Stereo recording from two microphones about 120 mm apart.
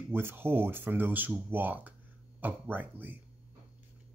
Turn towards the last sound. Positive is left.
turn(degrees=-15)  # may be behind; listen again after turning